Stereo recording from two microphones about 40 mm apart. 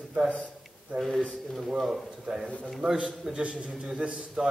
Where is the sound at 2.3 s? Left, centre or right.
Centre.